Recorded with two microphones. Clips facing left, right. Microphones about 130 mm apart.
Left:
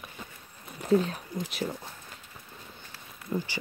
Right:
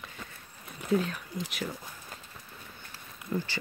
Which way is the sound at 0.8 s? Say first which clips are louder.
Left 4 dB; 40° left (ahead or behind).